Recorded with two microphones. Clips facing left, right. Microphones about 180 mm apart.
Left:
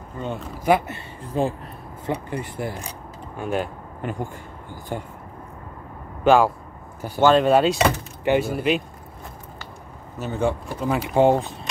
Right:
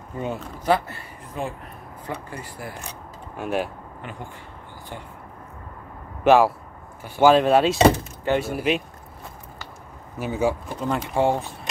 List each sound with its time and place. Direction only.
0.2 s speech: 5° right (ahead or behind)
0.7 s speech: 15° left (ahead or behind)
3.3 s speech: centre (ahead or behind)
4.0 s speech: 45° left (ahead or behind)
6.2 s speech: 5° right (ahead or behind)
10.1 s speech: 10° right (ahead or behind)
11.1 s speech: 20° left (ahead or behind)